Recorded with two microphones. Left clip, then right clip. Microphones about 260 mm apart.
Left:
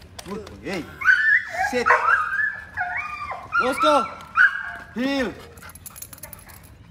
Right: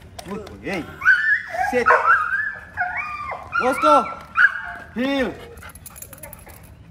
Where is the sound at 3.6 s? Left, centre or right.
Centre.